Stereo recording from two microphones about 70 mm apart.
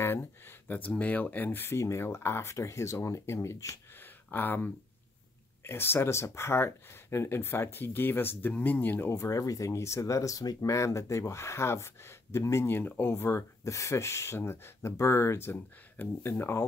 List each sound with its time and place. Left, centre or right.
0.0 s speech: left
4.0 s a sound: left
5.6 s speech: left
9.1 s speech: left
13.1 s speech: left